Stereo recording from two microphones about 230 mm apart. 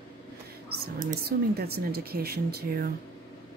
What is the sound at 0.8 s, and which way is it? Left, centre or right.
Speech, right.